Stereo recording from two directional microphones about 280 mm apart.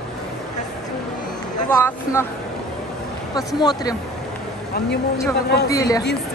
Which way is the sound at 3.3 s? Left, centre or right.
Centre.